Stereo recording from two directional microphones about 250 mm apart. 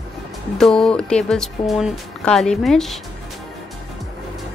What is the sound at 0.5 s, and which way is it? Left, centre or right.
Speech, centre.